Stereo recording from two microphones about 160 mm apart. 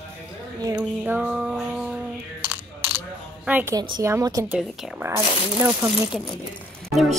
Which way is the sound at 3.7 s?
25° right (ahead or behind).